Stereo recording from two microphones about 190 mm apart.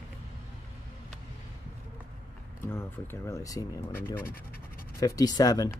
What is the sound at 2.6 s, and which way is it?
Speech, 15° left (ahead or behind).